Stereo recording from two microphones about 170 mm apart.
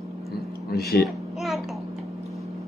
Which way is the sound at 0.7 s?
65° left (ahead or behind).